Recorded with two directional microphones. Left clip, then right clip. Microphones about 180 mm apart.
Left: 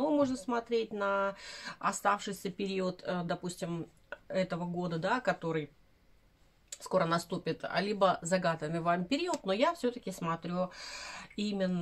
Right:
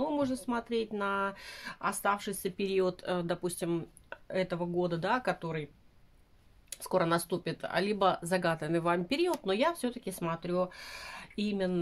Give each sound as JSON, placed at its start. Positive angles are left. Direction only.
{"t": 0.0, "sound": "speech", "side_deg": -30}
{"t": 6.7, "sound": "speech", "side_deg": -30}